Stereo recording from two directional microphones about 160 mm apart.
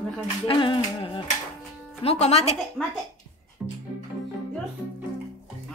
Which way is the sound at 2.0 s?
40° left (ahead or behind).